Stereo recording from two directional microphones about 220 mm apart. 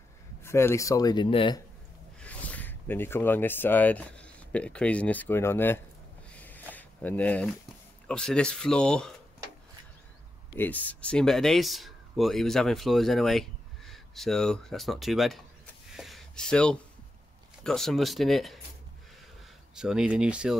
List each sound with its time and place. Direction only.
0.4 s speech: 10° left (ahead or behind)
2.1 s speech: 5° left (ahead or behind)
6.3 s a sound: 10° left (ahead or behind)
6.7 s speech: 5° left (ahead or behind)
10.5 s speech: 10° left (ahead or behind)
19.7 s speech: 5° right (ahead or behind)